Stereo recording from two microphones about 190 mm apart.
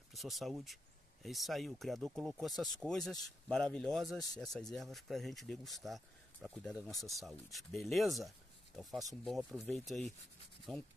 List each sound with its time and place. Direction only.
0.1 s speech: centre (ahead or behind)